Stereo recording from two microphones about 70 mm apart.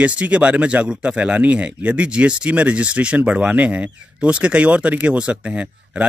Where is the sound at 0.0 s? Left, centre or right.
Centre.